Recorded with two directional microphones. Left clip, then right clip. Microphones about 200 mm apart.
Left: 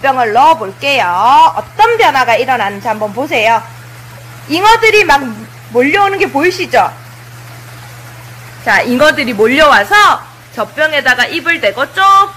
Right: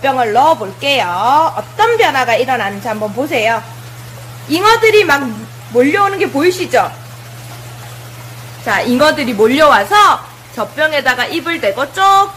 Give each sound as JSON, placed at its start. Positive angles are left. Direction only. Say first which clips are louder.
{"t": 0.0, "sound": "speech", "louder": "left 3 dB", "side_deg": 0}
{"t": 4.6, "sound": "speech", "louder": "left 2 dB", "side_deg": 5}
{"t": 8.9, "sound": "speech", "louder": "left 2 dB", "side_deg": 5}